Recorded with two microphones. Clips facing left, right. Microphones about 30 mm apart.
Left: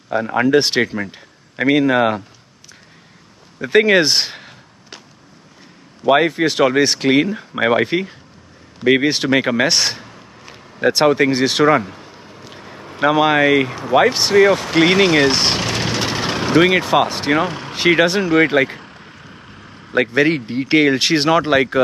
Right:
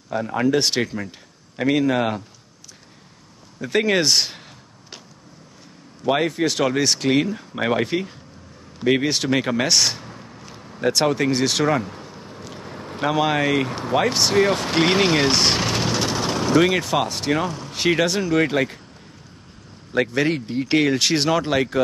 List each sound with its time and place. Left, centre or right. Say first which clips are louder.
0.1 s speech: left 5 dB; left
3.5 s speech: left 7 dB; left
6.0 s speech: left 6 dB; centre
13.0 s speech: left 6 dB; left
14.3 s speech: left 7 dB; left
14.8 s speech: left 5 dB; centre
15.8 s vehicle: left 2 dB; left
16.6 s speech: left 6 dB; left
17.5 s a sound: left 4 dB; left
17.7 s speech: left 6 dB; left
18.9 s vehicle: left 7 dB; left
19.9 s speech: left 5 dB; left